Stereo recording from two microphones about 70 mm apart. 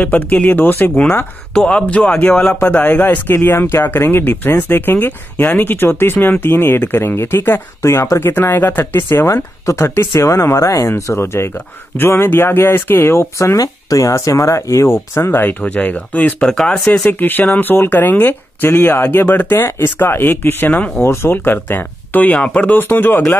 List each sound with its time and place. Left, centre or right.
0.0 s speech: left
1.5 s speech: centre; by 13.6 s left
13.6 s speech: left
15.4 s speech: left
16.5 s speech: centre
16.9 s speech: left
20.7 s speech: centre
21.0 s speech: left